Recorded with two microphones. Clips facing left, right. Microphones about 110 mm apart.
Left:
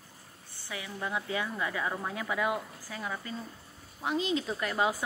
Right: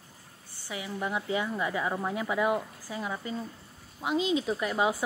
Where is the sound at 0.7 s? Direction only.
20° right (ahead or behind).